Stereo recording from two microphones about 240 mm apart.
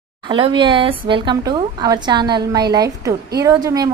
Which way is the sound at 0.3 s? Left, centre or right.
Centre.